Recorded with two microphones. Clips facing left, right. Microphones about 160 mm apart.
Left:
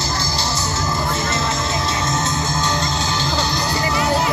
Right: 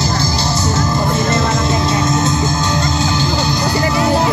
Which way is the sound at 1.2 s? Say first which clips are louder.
Right 6 dB; 55° right (ahead or behind).